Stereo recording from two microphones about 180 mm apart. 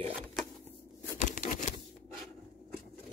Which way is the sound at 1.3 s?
45° left (ahead or behind).